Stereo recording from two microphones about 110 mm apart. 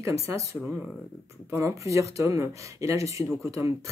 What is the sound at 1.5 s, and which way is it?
Speech, 30° right (ahead or behind).